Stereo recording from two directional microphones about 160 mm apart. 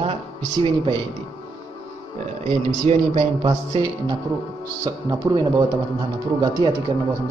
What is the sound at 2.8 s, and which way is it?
Speech, 40° right (ahead or behind).